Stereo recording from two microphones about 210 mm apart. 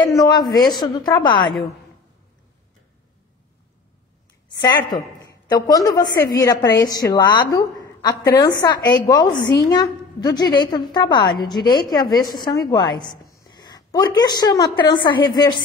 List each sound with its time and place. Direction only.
0.2 s a woman's voice: 20° left (ahead or behind)
4.7 s a woman's voice: 15° left (ahead or behind)